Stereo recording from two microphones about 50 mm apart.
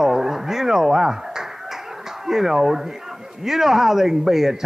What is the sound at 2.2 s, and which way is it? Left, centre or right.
A man's voice, centre.